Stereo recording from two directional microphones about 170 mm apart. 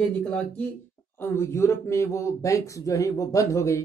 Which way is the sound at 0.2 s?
5° left (ahead or behind).